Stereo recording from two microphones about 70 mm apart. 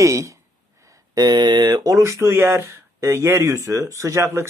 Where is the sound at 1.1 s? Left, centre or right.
Right.